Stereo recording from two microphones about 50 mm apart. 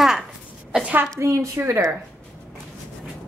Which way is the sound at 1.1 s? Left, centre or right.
Right.